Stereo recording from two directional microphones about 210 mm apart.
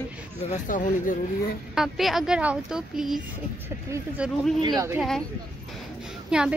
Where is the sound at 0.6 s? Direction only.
40° left (ahead or behind).